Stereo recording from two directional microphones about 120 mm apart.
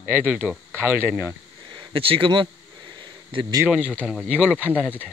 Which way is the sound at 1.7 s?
45° right (ahead or behind).